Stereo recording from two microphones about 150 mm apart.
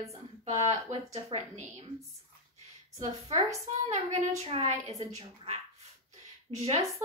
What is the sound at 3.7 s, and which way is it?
A woman's voice, 50° right (ahead or behind).